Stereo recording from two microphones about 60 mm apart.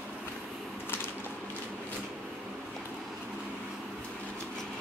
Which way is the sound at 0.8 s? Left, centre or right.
Left.